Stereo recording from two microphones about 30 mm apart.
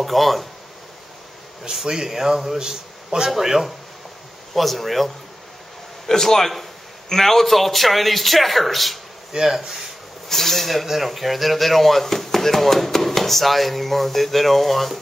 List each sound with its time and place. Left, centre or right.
0.0 s speech: centre
1.7 s speech: right
2.0 s a man's voice: centre
4.6 s speech: centre
6.0 s speech: centre
9.3 s speech: centre
10.2 s speech: centre